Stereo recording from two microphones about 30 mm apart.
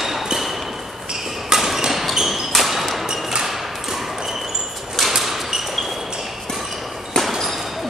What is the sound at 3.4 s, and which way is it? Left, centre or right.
Thump, centre.